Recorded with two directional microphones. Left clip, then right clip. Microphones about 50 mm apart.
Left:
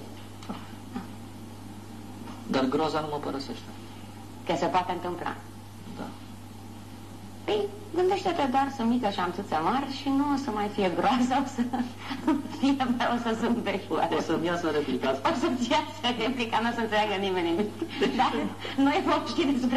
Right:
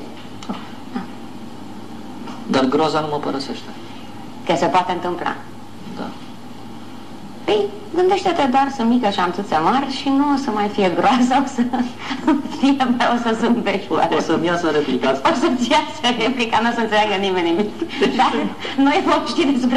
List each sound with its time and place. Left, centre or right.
2.5 s a woman's voice: right
7.4 s a woman's voice: right